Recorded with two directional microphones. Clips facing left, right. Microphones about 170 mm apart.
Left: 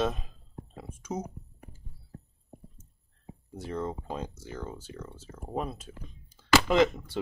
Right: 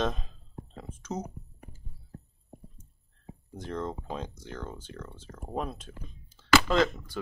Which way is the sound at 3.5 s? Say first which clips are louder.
Left 1 dB; 5° left (ahead or behind).